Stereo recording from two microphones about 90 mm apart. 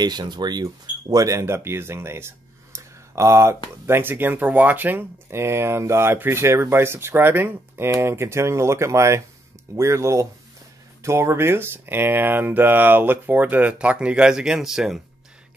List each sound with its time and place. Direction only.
0.0 s speech: 50° right (ahead or behind)
1.1 s speech: 35° right (ahead or behind); by 15.0 s 5° right (ahead or behind)